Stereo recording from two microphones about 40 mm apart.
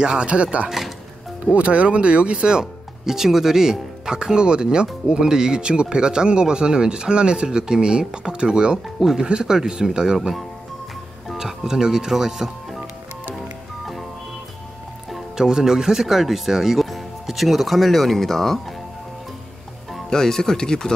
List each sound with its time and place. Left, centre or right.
0.0 s speech: right
0.7 s music: centre
1.4 s speech: right; by 10.1 s centre
10.1 s speech: centre
11.3 s speech: centre
15.3 s speech: centre
20.1 s speech: centre